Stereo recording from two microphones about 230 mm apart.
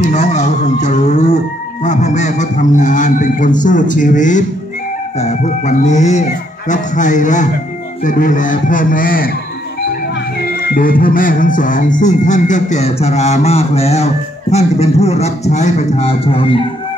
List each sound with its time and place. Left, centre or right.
0.1 s speech: left
10.4 s music: left